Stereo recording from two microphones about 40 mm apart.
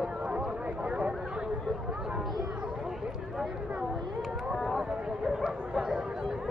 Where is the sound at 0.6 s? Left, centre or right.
Right.